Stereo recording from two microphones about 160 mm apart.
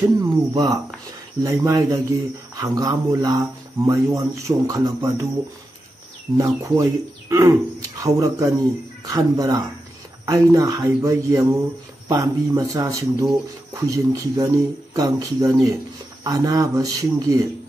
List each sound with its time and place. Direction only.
0.2 s speech: 25° right (ahead or behind)
6.3 s speech: 20° right (ahead or behind)